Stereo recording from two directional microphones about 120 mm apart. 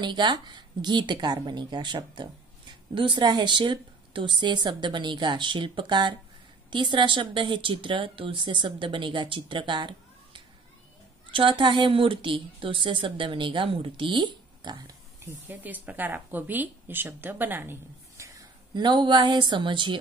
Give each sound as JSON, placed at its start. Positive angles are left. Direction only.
{"t": 0.0, "sound": "a woman's voice", "side_deg": -40}
{"t": 15.4, "sound": "a woman's voice", "side_deg": -15}
{"t": 18.7, "sound": "a woman's voice", "side_deg": -40}